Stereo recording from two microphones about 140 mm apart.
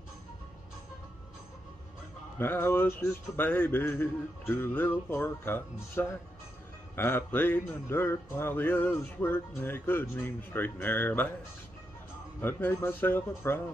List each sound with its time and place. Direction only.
2.3 s music: 15° left (ahead or behind)
12.4 s music: 15° left (ahead or behind)